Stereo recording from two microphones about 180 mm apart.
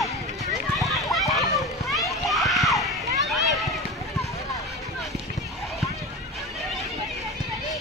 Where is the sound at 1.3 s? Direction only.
Centre (ahead or behind).